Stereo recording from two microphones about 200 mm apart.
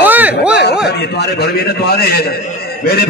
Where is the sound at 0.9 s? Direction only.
55° left (ahead or behind).